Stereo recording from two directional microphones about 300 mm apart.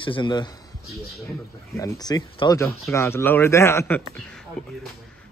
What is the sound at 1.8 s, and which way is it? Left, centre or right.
A man's voice, centre.